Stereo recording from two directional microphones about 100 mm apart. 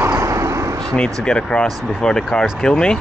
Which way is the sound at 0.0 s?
30° right (ahead or behind).